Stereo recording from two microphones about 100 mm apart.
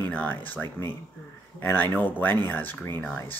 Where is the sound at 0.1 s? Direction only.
15° left (ahead or behind).